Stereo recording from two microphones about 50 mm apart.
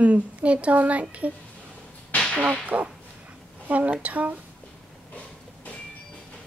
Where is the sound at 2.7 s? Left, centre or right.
Right.